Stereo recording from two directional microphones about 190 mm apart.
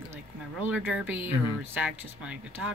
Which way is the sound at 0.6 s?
5° right (ahead or behind).